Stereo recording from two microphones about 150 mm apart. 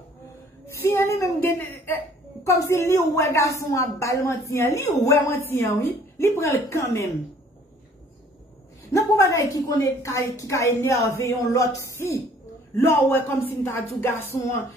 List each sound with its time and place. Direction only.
0.7 s a sound: 15° left (ahead or behind)
2.4 s a woman's voice: 20° left (ahead or behind)
9.3 s a woman's voice: 20° left (ahead or behind)